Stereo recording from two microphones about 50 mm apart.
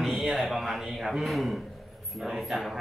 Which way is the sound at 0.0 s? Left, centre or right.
Centre.